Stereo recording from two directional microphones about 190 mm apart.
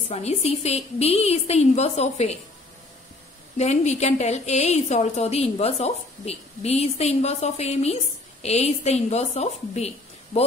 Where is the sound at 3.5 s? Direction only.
35° left (ahead or behind).